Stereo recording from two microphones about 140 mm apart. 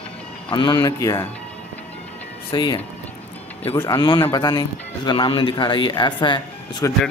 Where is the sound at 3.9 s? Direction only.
35° left (ahead or behind).